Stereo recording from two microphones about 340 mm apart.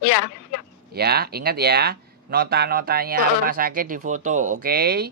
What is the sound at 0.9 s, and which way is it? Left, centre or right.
Speech, right.